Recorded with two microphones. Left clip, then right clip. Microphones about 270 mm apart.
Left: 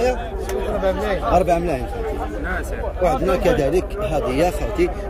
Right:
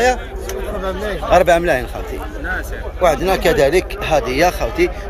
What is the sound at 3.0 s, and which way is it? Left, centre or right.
Speech, centre.